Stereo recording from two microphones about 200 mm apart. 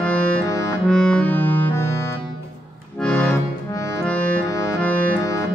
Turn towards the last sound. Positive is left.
turn(degrees=10)  # may be behind; listen again after turning